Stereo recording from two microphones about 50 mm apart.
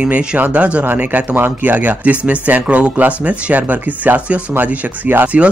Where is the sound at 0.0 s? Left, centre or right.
Right.